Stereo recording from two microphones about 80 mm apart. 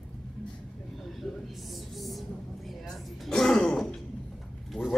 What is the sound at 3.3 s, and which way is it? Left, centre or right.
Throat clearing, centre.